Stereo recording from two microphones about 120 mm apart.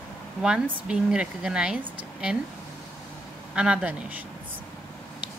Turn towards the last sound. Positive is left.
turn(degrees=-10)  # may be behind; listen again after turning